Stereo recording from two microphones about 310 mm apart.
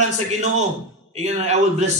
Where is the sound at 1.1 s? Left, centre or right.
Right.